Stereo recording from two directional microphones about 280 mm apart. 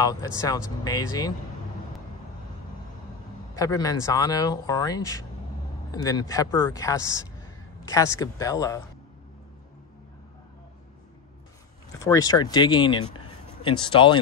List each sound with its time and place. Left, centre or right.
0.0 s speech: centre
3.5 s speech: centre
12.0 s speech: centre